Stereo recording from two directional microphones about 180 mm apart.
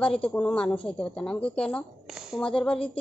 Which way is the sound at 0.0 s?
5° left (ahead or behind).